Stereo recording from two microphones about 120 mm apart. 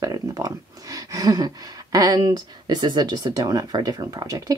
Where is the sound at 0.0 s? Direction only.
30° right (ahead or behind).